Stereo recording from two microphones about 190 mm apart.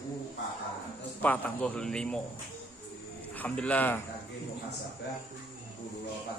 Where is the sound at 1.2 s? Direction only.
10° left (ahead or behind).